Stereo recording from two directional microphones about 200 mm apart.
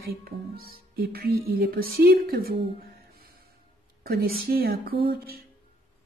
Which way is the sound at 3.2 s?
50° right (ahead or behind).